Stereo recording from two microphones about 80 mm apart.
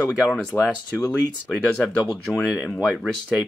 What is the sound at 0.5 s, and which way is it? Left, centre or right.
Speech, centre.